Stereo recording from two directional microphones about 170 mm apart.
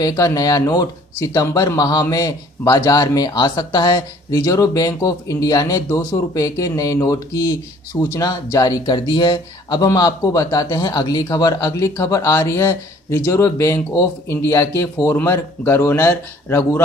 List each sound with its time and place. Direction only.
0.0 s speech: 20° left (ahead or behind)